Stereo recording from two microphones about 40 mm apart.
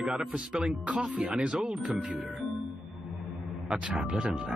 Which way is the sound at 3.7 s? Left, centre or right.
Right.